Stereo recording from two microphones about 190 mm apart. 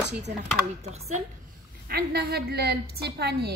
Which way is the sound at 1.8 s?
55° right (ahead or behind).